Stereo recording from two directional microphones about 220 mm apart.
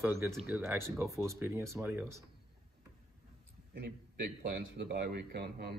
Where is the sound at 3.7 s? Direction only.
50° right (ahead or behind).